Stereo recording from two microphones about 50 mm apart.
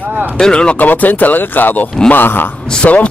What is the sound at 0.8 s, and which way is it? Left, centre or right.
A man's voice, left.